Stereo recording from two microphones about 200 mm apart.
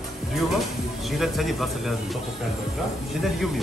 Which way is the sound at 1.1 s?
Centre (ahead or behind).